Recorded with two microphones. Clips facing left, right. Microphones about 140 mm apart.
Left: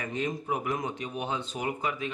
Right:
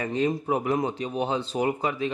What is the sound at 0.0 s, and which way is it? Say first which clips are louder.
A man's voice: right 7 dB; 35° right (ahead or behind).